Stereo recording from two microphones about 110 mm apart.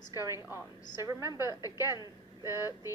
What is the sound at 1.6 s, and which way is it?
Speech, 35° left (ahead or behind).